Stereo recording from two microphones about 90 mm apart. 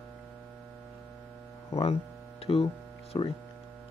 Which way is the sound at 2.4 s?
90° left.